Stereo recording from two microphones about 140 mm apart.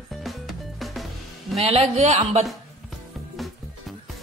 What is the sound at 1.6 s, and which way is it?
Speech, 45° right (ahead or behind).